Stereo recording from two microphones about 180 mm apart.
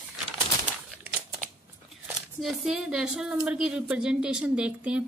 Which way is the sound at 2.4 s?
Centre (ahead or behind).